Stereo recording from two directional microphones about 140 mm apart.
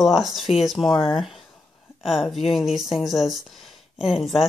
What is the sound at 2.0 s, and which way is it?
Speech, centre (ahead or behind).